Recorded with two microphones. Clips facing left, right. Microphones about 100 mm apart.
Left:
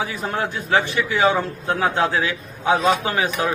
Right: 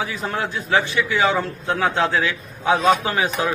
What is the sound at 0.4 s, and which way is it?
Speech, 50° left (ahead or behind).